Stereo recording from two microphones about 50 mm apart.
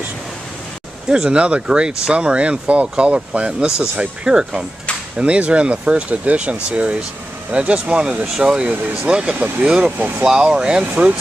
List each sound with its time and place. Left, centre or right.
1.0 s speech: centre
9.9 s speech: right
10.2 s speech: centre